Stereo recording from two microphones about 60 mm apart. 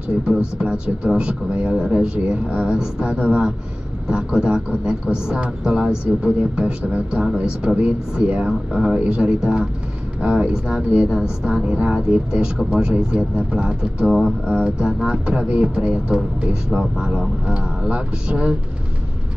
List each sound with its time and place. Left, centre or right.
0.6 s speech: centre